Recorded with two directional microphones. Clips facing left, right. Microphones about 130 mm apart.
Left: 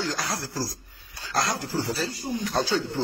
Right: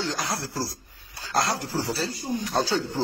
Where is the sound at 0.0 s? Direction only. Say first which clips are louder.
Even; 25° right (ahead or behind).